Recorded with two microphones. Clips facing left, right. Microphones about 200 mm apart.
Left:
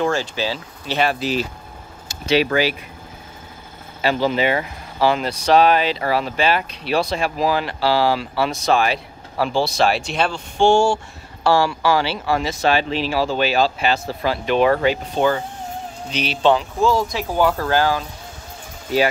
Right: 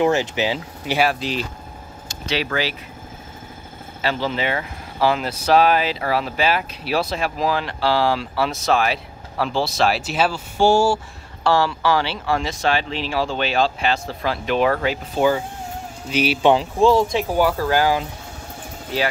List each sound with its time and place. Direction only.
0.0 s speech: 20° right (ahead or behind)
0.9 s speech: centre (ahead or behind)
2.0 s speech: 15° left (ahead or behind)
4.0 s speech: 15° left (ahead or behind)
5.0 s speech: centre (ahead or behind)
11.4 s speech: 10° left (ahead or behind); by 16.5 s 10° right (ahead or behind)
16.5 s speech: 30° right (ahead or behind)
17.4 s speech: 10° right (ahead or behind)